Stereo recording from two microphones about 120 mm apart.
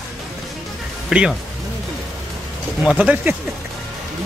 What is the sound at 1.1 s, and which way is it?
Speech, 5° right (ahead or behind).